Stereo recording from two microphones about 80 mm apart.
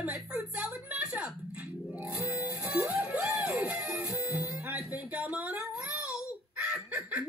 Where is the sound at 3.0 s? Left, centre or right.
Centre.